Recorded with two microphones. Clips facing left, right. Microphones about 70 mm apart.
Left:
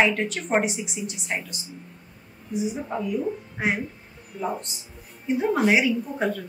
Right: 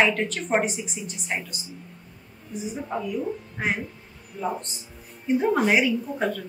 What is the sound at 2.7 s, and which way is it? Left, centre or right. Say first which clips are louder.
A woman's voice: left 1 dB; centre.